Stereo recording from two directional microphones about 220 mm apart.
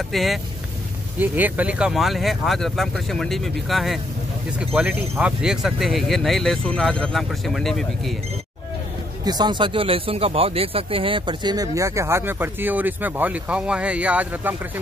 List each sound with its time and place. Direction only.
0.1 s speech: centre (ahead or behind)
9.2 s speech: 20° right (ahead or behind)